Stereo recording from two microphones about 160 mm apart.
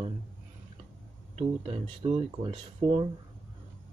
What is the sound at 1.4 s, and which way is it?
Speech, 40° right (ahead or behind).